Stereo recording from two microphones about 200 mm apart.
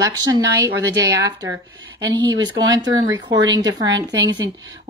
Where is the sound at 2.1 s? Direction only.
20° right (ahead or behind).